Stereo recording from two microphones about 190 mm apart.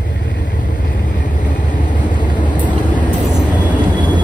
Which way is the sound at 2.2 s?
25° left (ahead or behind).